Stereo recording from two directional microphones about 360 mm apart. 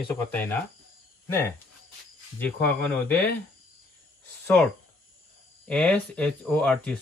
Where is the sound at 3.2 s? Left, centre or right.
Centre.